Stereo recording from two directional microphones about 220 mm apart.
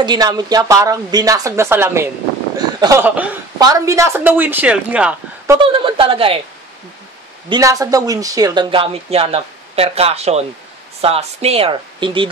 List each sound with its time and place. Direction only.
0.0 s speech: 20° right (ahead or behind)
2.5 s a sound: 15° right (ahead or behind)
3.6 s speech: 15° right (ahead or behind)
5.6 s speech: 25° right (ahead or behind)
7.4 s speech: 20° right (ahead or behind)